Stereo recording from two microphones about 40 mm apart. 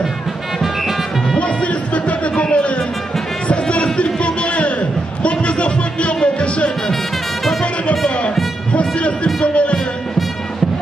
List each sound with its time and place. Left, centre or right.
1.6 s music: left
7.9 s music: left
8.7 s a sound: left